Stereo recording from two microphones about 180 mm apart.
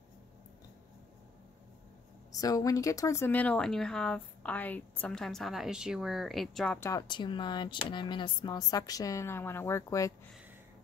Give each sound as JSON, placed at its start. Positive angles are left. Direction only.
{"t": 2.3, "sound": "speech", "side_deg": 20}
{"t": 6.8, "sound": "speech", "side_deg": 20}